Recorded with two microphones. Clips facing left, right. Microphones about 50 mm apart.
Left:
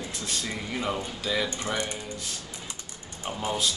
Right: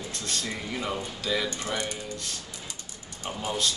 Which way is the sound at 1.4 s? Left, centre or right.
Left.